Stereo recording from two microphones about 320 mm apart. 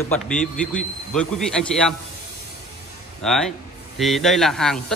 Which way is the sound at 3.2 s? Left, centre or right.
Centre.